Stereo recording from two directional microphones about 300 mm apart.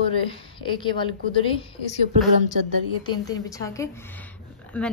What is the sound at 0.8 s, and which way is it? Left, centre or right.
Speech, centre.